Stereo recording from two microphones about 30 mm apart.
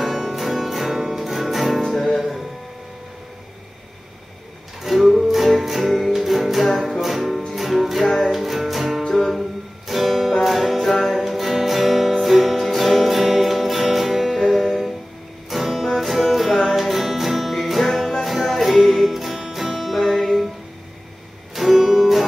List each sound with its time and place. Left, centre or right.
0.0 s music: centre
4.8 s music: centre
19.7 s music: centre
21.7 s music: centre